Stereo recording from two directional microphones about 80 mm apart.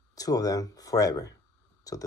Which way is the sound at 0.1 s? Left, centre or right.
Left.